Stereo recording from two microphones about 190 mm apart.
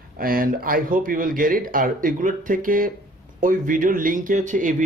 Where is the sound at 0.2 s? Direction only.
50° right (ahead or behind).